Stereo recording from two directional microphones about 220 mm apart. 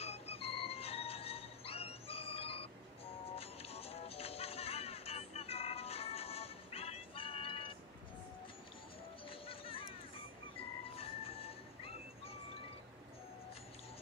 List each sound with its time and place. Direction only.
0.0 s music: 30° left (ahead or behind)
9.3 s music: 25° left (ahead or behind)
11.0 s music: 25° left (ahead or behind)